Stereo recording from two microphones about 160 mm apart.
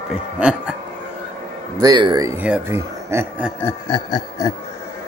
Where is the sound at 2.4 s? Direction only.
10° right (ahead or behind).